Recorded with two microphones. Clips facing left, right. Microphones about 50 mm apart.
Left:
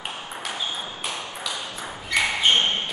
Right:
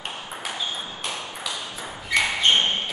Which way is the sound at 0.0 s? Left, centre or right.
Centre.